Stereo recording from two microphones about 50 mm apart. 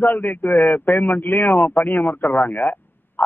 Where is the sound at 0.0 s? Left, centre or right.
Left.